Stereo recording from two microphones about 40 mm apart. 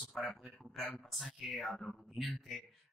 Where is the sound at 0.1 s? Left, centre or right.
Left.